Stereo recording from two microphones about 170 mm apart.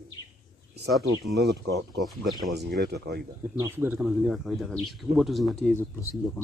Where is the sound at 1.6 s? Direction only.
80° right.